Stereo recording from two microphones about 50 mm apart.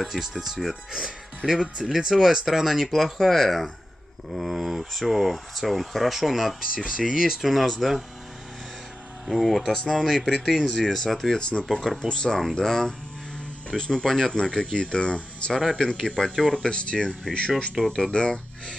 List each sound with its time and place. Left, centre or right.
0.0 s speech: centre
6.6 s speech: centre
9.3 s speech: centre
11.3 s speech: left
11.6 s speech: centre
12.1 s speech: centre
15.6 s speech: centre